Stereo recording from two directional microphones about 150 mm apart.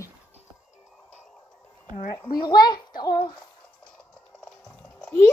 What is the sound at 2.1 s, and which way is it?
A child's voice, 30° left (ahead or behind).